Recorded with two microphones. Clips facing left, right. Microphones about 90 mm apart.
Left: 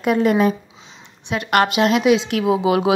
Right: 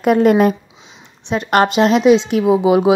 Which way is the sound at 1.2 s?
30° right (ahead or behind).